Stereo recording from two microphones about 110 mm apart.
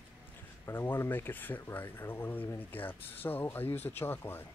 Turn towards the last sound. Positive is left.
turn(degrees=20)  # may be behind; listen again after turning